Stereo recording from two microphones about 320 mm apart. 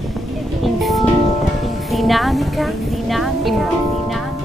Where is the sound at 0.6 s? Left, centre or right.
Centre.